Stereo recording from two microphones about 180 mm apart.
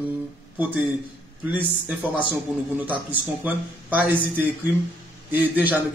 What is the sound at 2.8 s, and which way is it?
A man's voice, 10° right (ahead or behind).